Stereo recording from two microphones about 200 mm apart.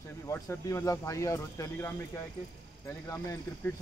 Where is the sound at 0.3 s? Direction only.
15° left (ahead or behind).